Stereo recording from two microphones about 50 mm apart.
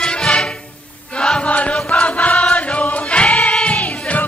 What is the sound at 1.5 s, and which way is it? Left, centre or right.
Chant, left.